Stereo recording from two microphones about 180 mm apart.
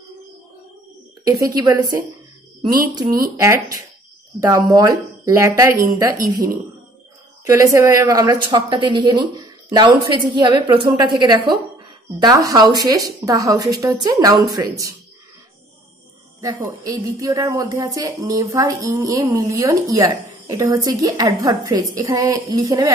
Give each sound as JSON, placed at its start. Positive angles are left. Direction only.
{"t": 1.2, "sound": "speech", "side_deg": -20}
{"t": 7.4, "sound": "speech", "side_deg": -15}
{"t": 16.3, "sound": "speech", "side_deg": -20}